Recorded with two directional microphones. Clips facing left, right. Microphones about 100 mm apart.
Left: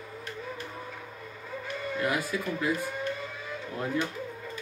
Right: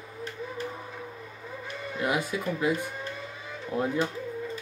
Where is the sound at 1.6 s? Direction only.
20° right (ahead or behind).